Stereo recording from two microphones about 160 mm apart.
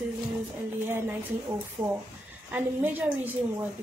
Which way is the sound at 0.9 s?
15° right (ahead or behind).